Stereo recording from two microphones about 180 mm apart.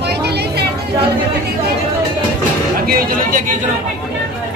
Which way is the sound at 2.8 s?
55° right (ahead or behind).